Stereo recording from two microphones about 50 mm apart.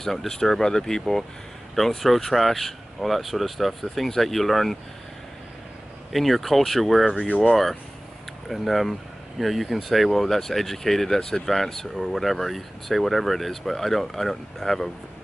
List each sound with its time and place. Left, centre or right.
0.0 s speech: centre
6.1 s speech: centre
7.2 s speech: left
8.5 s speech: centre
11.4 s speech: centre